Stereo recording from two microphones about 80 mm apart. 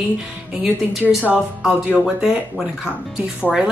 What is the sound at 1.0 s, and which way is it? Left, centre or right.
Speech, centre.